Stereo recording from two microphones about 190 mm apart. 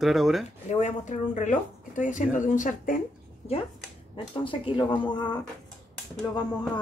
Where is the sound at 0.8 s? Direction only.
40° left (ahead or behind).